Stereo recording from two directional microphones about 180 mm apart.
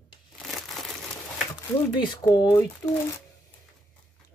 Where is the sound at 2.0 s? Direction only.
25° left (ahead or behind).